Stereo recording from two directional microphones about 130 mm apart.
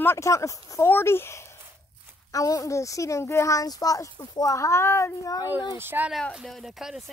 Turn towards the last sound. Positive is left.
turn(degrees=0)  # may be behind; listen again after turning